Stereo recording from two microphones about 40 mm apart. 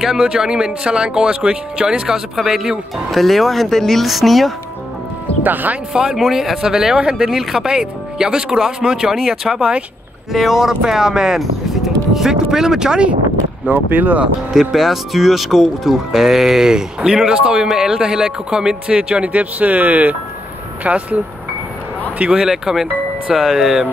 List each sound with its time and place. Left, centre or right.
0.0 s speech: centre
0.3 s speech: centre
3.1 s speech: centre
5.4 s speech: right
6.1 s speech: centre
10.3 s speech: centre
13.7 s speech: right
14.5 s speech: centre; by 21.2 s right
22.4 s speech: centre